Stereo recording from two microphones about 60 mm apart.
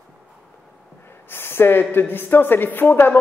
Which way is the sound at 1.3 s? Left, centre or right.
Left.